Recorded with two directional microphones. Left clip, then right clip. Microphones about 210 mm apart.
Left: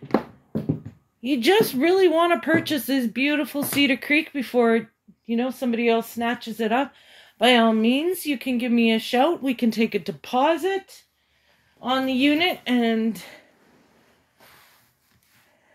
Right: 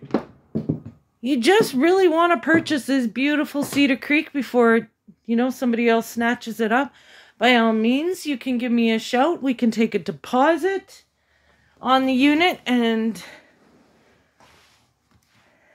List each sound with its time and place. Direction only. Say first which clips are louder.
1.2 s speech: right 2 dB; 10° right (ahead or behind)
7.3 s speech: even; centre (ahead or behind); by 10.8 s 25° right (ahead or behind)
11.8 s speech: right 4 dB; 25° right (ahead or behind)
12.6 s speech: right 1 dB; 5° right (ahead or behind)